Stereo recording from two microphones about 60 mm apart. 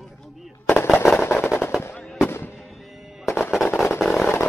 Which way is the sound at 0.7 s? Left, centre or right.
Left.